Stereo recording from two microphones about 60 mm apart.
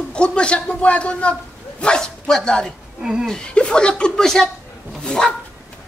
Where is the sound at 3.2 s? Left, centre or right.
Centre.